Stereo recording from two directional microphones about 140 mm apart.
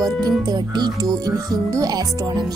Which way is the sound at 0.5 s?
30° right (ahead or behind).